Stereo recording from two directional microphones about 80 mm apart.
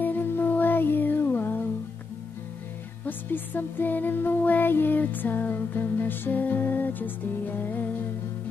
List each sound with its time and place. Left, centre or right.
0.0 s music: left
3.1 s music: left